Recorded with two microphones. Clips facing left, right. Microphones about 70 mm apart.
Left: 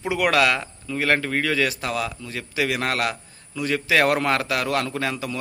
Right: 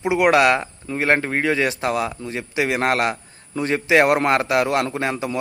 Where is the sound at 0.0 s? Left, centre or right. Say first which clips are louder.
Right 4 dB; right.